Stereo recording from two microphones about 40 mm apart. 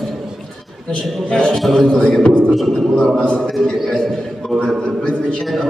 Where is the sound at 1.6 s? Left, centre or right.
Centre.